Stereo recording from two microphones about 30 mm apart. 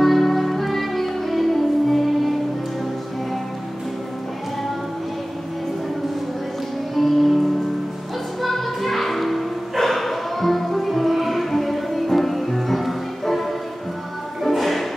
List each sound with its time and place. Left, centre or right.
0.0 s music: centre
7.0 s music: centre